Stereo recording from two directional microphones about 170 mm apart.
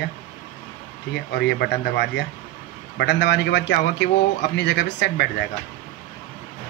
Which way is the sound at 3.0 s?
85° left.